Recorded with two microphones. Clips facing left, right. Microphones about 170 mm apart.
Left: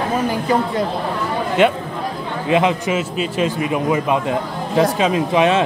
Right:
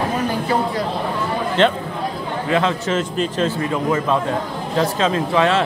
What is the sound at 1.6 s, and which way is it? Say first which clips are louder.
A man's voice: left 2 dB; 10° left (ahead or behind).